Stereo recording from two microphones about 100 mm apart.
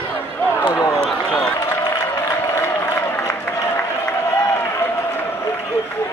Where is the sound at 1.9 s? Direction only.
30° left (ahead or behind).